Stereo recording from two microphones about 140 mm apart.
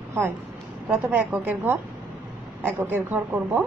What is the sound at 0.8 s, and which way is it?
A woman's voice, 10° right (ahead or behind).